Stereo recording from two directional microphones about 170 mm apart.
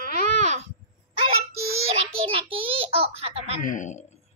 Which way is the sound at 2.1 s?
30° right (ahead or behind).